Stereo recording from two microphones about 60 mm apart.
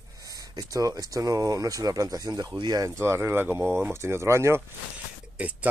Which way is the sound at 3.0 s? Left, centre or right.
Right.